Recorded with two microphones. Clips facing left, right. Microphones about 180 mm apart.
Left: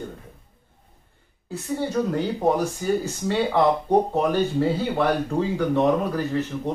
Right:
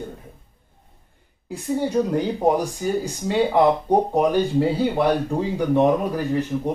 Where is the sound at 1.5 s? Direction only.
15° right (ahead or behind).